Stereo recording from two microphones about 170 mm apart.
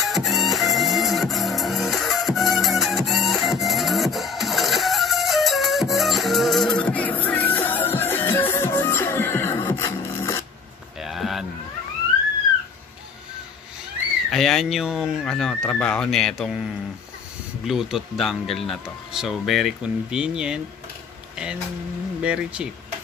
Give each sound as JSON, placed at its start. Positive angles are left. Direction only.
{"t": 0.0, "sound": "music", "side_deg": 0}
{"t": 11.0, "sound": "a sound", "side_deg": 0}
{"t": 14.3, "sound": "speech", "side_deg": 0}
{"t": 17.6, "sound": "speech", "side_deg": -5}
{"t": 22.2, "sound": "speech", "side_deg": -5}